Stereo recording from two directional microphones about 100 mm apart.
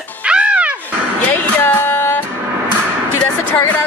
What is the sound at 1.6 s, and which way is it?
Music, 20° left (ahead or behind).